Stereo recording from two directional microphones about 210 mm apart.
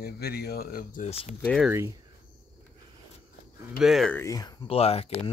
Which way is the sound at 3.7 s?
Centre (ahead or behind).